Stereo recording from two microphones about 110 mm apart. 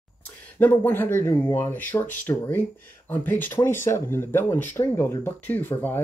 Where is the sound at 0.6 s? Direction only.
20° left (ahead or behind).